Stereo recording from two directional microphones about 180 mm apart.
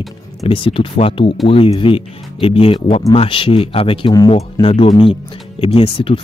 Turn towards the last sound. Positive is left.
turn(degrees=30)  # may be behind; listen again after turning